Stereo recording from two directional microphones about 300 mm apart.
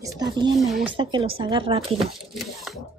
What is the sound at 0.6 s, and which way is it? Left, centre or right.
Speech, centre.